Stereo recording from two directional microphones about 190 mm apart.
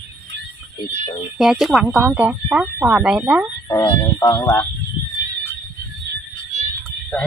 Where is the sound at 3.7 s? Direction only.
15° left (ahead or behind).